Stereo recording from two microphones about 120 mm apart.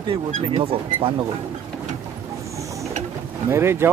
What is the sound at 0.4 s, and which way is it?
Speech, 55° right (ahead or behind).